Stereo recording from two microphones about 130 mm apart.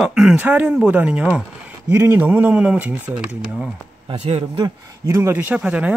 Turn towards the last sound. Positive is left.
turn(degrees=-10)  # may be behind; listen again after turning